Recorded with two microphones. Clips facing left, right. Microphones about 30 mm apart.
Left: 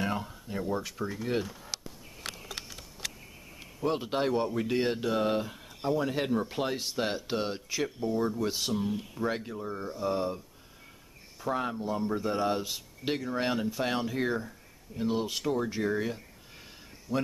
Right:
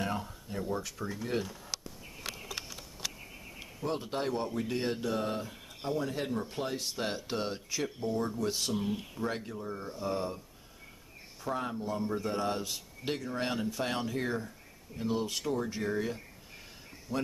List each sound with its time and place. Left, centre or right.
0.0 s speech: centre
3.8 s speech: left
6.8 s speech: centre
8.7 s speech: centre
9.2 s speech: centre
11.4 s speech: centre
17.1 s a man's voice: centre